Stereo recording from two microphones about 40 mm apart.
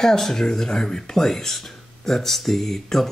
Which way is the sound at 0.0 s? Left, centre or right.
Centre.